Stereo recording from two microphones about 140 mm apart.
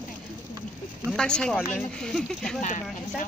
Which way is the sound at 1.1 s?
5° left (ahead or behind).